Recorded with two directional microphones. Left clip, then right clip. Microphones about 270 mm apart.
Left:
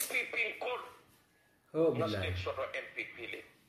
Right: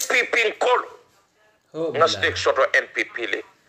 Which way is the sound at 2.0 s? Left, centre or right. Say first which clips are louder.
Right 17 dB; right.